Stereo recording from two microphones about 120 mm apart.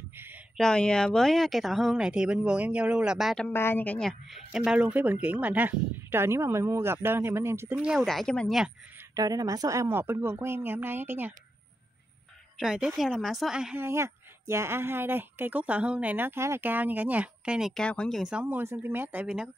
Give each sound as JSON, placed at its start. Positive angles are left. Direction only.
{"t": 0.6, "sound": "speech", "side_deg": 5}
{"t": 3.5, "sound": "speech", "side_deg": 20}
{"t": 4.1, "sound": "a woman's voice", "side_deg": 0}
{"t": 7.8, "sound": "speech", "side_deg": -5}
{"t": 9.1, "sound": "a woman's voice", "side_deg": -30}
{"t": 12.5, "sound": "speech", "side_deg": -5}
{"t": 13.7, "sound": "a woman's voice", "side_deg": -20}
{"t": 18.3, "sound": "a woman's voice", "side_deg": -15}